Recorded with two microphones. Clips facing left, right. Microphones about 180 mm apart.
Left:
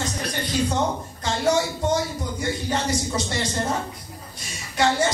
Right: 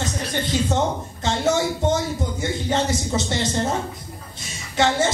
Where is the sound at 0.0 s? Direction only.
25° right (ahead or behind).